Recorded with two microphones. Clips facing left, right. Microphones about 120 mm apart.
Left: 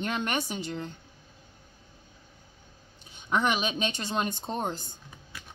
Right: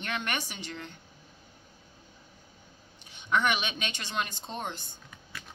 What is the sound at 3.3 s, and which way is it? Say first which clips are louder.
Speech: left 1 dB; 35° left (ahead or behind).